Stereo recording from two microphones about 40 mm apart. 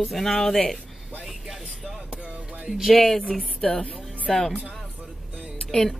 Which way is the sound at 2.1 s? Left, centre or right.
Right.